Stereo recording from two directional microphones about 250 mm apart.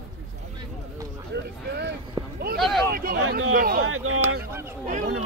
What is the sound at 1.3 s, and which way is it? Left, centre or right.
Speech, right.